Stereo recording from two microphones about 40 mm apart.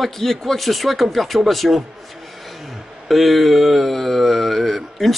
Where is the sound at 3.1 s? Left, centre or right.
Centre.